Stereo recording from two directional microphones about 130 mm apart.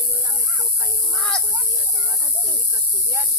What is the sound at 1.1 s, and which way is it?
Snake, 5° left (ahead or behind).